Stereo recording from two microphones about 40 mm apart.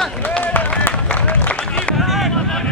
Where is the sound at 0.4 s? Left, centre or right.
Left.